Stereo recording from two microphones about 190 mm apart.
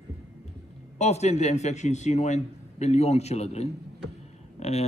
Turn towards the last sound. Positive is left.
turn(degrees=35)  # may be behind; listen again after turning